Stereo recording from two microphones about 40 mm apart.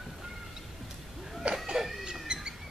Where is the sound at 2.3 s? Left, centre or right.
Centre.